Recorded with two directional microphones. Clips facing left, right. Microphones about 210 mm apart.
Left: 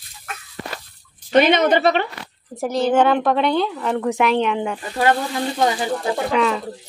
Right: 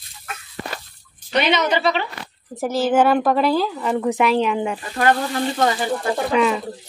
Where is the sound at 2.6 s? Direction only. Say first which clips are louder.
Even; 5° right (ahead or behind).